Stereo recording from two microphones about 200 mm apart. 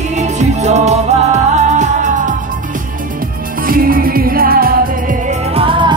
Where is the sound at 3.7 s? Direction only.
45° right (ahead or behind).